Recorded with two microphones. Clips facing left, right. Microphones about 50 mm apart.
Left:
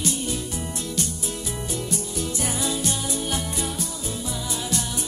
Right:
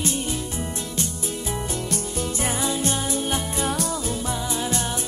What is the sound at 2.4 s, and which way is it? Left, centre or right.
Music, right.